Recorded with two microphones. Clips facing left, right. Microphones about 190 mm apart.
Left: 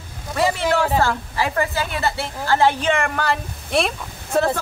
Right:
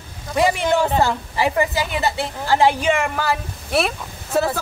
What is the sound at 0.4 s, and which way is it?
Speech, 15° right (ahead or behind).